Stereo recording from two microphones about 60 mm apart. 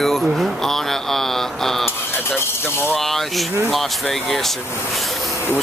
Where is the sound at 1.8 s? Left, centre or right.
Left.